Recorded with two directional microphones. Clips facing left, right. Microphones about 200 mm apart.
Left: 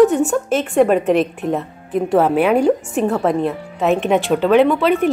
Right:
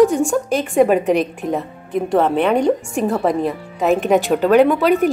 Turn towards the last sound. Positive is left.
turn(degrees=0)  # may be behind; listen again after turning